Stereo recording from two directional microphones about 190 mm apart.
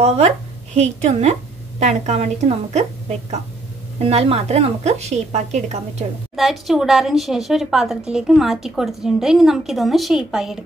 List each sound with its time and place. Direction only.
0.7 s a woman's voice: 35° right (ahead or behind)
6.3 s a woman's voice: centre (ahead or behind)